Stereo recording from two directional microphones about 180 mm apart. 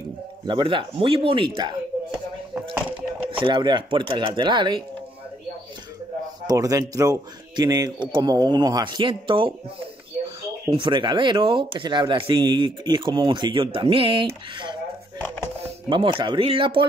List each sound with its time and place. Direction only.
0.5 s speech: 25° right (ahead or behind)
3.3 s speech: 30° right (ahead or behind)
6.4 s speech: 20° right (ahead or behind)
15.1 s music: 10° left (ahead or behind)
15.6 s speech: 30° right (ahead or behind)